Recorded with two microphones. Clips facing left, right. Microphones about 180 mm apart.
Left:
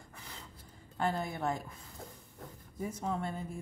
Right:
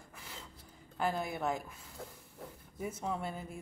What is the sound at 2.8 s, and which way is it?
Speech, 5° right (ahead or behind).